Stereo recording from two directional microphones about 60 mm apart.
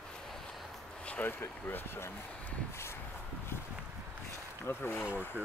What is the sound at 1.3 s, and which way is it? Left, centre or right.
Speech, left.